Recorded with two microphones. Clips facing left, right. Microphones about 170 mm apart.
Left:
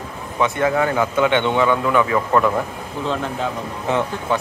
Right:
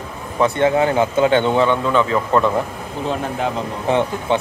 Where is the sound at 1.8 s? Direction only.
10° left (ahead or behind).